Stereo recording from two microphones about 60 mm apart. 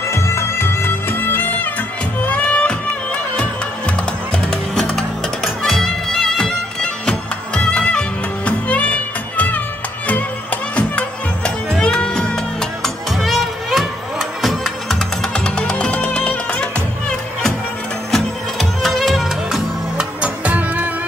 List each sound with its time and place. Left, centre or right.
0.1 s music: left
2.2 s music: centre
15.3 s music: centre
18.1 s music: centre
20.0 s music: right